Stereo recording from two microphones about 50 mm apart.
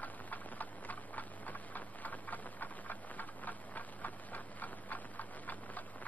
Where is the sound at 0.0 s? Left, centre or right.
Left.